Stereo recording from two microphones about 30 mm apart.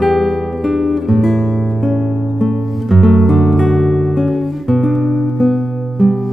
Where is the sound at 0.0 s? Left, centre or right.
Centre.